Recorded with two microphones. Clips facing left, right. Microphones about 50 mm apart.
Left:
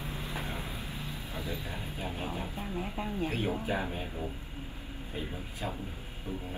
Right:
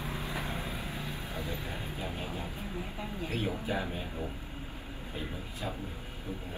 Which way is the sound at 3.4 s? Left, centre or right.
Left.